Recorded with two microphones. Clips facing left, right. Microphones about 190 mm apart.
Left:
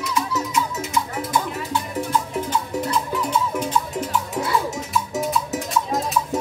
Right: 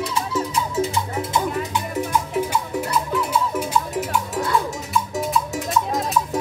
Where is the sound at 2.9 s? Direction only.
5° right (ahead or behind).